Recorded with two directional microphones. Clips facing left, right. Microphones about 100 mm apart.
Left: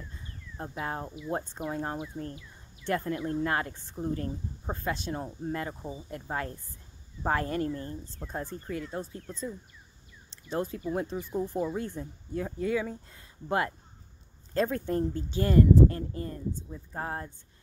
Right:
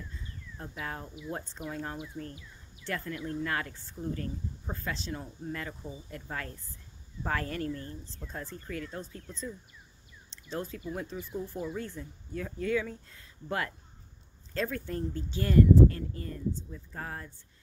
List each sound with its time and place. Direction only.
0.6 s speech: 30° left (ahead or behind); by 9.5 s 10° left (ahead or behind)
10.8 s speech: 30° left (ahead or behind)
11.1 s speech: 15° left (ahead or behind)